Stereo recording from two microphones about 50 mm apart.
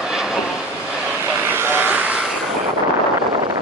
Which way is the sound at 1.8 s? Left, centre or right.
Right.